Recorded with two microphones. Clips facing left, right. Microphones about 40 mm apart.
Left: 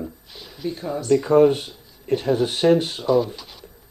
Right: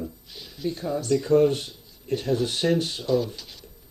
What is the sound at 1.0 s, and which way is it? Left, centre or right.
Speech, left.